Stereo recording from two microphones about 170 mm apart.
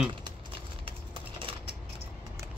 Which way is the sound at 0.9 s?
30° right (ahead or behind).